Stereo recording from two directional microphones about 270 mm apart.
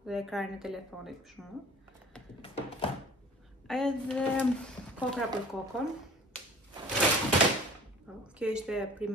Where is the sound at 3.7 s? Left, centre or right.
Centre.